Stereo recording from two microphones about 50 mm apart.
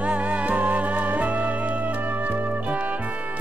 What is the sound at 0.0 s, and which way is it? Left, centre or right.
Music, right.